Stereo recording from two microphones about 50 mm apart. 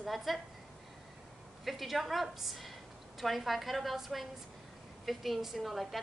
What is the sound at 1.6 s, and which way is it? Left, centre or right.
A woman's voice, centre.